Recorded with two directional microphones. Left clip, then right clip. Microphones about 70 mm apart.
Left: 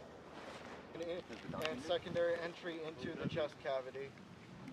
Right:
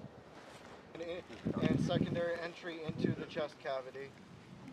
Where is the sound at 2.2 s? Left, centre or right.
Centre.